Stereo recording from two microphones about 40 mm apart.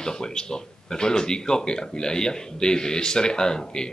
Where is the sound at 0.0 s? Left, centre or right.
Centre.